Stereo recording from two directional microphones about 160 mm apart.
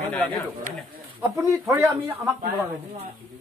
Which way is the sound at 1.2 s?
20° right (ahead or behind).